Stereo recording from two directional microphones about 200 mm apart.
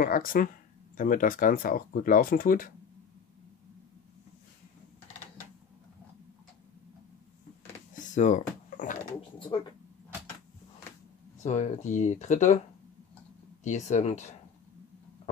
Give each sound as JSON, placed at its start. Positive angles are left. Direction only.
{"t": 0.0, "sound": "speech", "side_deg": 45}
{"t": 8.0, "sound": "a sound", "side_deg": 40}
{"t": 11.4, "sound": "speech", "side_deg": 35}
{"t": 13.7, "sound": "speech", "side_deg": 35}